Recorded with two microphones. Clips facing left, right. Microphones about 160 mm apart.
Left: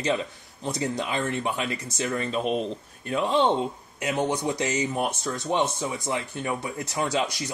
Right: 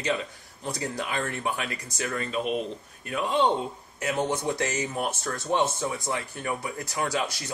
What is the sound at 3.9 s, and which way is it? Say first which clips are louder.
Speech: left 1 dB; 20° left (ahead or behind).